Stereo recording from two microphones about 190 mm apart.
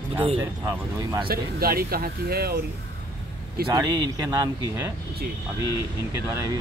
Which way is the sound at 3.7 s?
20° right (ahead or behind).